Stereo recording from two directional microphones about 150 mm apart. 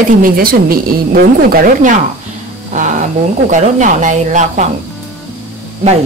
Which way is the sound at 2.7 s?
55° right (ahead or behind).